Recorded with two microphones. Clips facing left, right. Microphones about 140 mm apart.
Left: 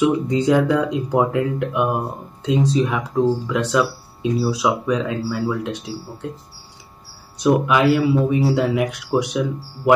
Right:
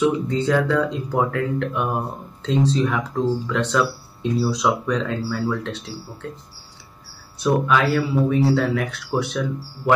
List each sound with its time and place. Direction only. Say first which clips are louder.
0.0 s speech: left 2 dB; 15° left (ahead or behind)
7.3 s speech: left 3 dB; 15° left (ahead or behind)